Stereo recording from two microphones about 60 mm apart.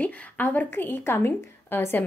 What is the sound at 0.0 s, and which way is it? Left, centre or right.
A woman's voice, left.